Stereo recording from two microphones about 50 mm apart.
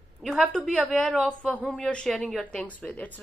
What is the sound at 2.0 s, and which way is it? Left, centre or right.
Speech, centre.